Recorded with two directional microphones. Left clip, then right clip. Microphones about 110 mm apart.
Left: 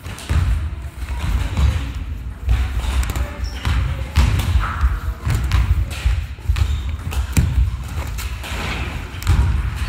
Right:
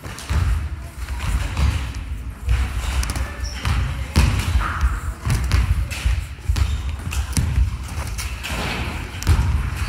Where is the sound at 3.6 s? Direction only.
55° left (ahead or behind).